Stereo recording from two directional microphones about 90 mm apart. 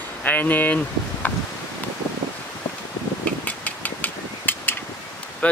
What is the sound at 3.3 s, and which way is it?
Mechanical fan, 15° left (ahead or behind).